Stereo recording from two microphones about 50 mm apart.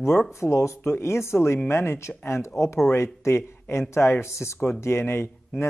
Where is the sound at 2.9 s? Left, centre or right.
Left.